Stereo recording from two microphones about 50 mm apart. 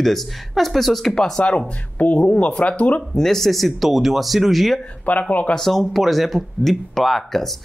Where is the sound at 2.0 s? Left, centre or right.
Left.